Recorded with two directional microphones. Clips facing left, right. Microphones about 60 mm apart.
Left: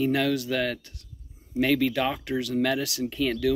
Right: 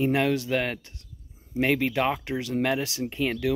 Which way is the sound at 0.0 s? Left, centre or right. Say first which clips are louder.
Right 1 dB; right.